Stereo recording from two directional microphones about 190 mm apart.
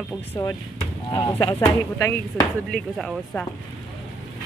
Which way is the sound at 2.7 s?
5° left (ahead or behind).